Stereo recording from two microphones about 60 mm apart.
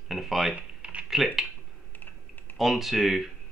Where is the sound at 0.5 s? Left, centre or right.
Centre.